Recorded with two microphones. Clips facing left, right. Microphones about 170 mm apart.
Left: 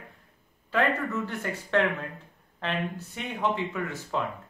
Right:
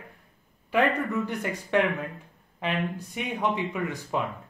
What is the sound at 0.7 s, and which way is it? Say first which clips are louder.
Speech: right 2 dB; 15° right (ahead or behind).